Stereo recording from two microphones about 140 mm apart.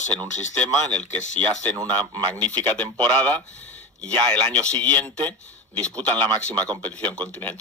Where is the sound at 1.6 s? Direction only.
10° left (ahead or behind).